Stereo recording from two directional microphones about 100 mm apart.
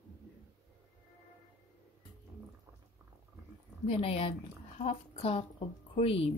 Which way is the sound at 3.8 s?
80° left.